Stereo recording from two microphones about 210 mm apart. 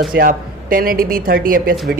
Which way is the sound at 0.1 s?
45° right (ahead or behind).